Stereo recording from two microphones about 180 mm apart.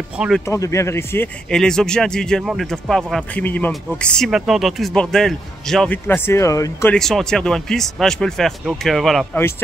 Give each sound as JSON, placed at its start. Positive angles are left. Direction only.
{"t": 0.5, "sound": "speech", "side_deg": 15}
{"t": 6.9, "sound": "speech", "side_deg": 0}